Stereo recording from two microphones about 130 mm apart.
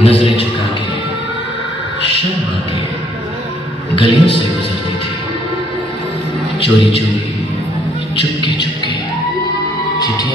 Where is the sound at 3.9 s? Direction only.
40° left (ahead or behind).